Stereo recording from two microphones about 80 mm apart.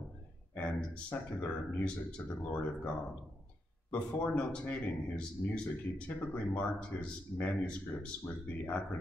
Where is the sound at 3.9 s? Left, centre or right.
Centre.